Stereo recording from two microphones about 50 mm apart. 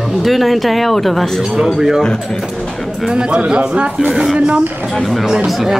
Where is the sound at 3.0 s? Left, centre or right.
Centre.